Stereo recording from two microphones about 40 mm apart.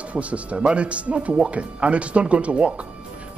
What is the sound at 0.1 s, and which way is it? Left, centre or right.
A man's voice, right.